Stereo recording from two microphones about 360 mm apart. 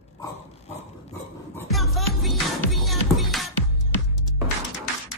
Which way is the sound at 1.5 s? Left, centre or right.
Centre.